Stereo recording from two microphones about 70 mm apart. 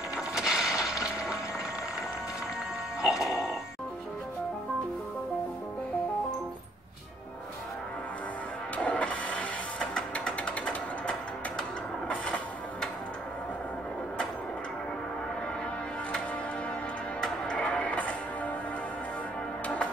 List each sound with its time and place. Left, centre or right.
0.1 s mechanisms: centre
3.0 s music: centre
8.7 s vehicle: left
17.2 s music: centre